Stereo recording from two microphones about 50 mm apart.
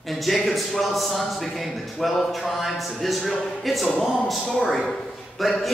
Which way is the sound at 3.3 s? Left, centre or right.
Centre.